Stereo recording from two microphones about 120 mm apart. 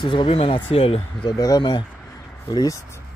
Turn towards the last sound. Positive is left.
turn(degrees=25)  # may be behind; listen again after turning